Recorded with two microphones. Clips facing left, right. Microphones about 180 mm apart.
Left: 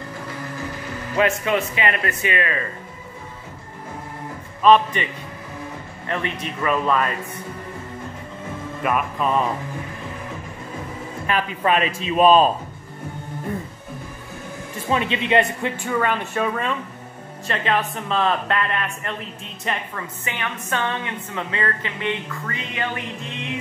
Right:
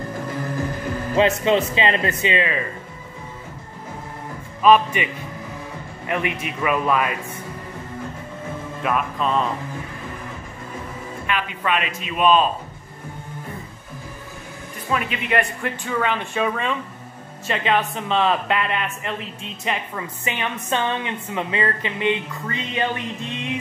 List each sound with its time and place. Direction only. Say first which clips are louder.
1.1 s a woman's voice: right 2 dB; 25° right (ahead or behind)
4.6 s speech: even; 5° right (ahead or behind)
8.8 s speech: left 1 dB; 5° left (ahead or behind)
11.2 s speech: left 3 dB; 35° left (ahead or behind)
14.9 s speech: left 3 dB; 25° left (ahead or behind)
15.7 s speech: left 1 dB; 10° left (ahead or behind)
20.0 s a woman's voice: right 3 dB; 20° right (ahead or behind)